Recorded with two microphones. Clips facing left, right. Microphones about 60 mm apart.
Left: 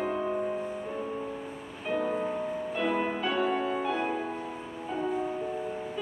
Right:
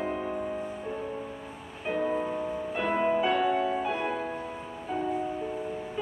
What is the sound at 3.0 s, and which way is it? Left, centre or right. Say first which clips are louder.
Music: right 6 dB; centre.